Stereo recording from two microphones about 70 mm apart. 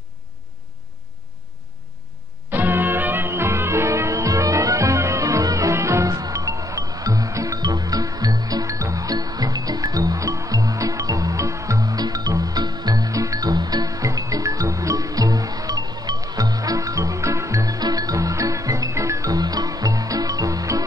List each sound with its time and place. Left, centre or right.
2.5 s music: right
17.7 s music: right